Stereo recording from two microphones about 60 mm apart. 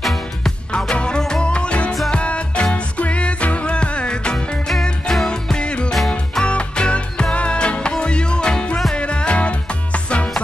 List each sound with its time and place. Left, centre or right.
0.0 s music: centre
0.7 s music: centre